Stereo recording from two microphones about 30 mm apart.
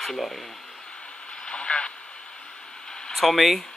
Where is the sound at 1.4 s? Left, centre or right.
Left.